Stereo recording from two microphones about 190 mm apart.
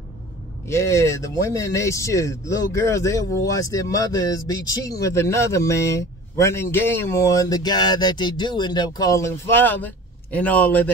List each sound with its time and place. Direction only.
0.7 s speech: 15° left (ahead or behind)